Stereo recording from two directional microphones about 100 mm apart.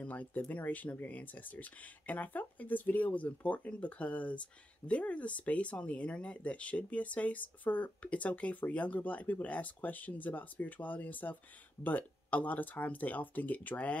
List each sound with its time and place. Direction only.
0.0 s speech: 15° left (ahead or behind)